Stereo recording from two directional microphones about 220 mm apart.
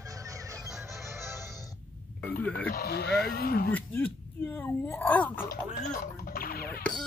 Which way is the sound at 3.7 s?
10° left (ahead or behind).